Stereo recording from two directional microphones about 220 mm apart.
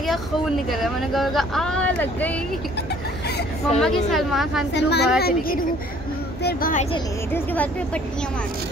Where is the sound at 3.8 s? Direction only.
Centre (ahead or behind).